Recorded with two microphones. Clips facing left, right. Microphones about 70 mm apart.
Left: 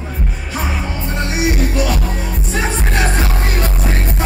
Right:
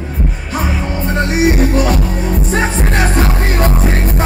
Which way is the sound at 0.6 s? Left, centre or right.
Centre.